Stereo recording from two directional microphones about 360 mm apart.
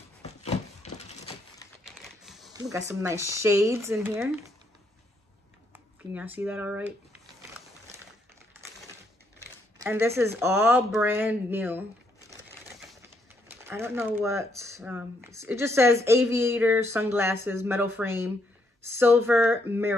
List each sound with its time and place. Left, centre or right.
0.5 s a sound: centre
2.2 s speech: centre
6.1 s speech: centre
9.8 s speech: centre
13.5 s speech: centre